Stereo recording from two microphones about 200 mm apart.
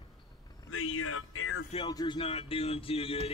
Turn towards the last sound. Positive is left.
turn(degrees=30)  # may be behind; listen again after turning